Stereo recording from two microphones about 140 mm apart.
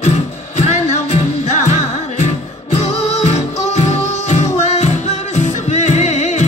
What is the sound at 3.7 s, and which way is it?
Music, 55° left (ahead or behind).